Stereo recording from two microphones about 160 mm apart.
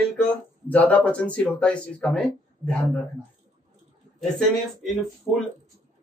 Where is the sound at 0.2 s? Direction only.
10° left (ahead or behind).